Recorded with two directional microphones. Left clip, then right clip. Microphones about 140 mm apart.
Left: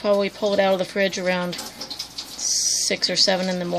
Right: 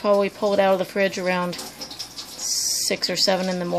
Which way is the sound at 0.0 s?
5° right (ahead or behind).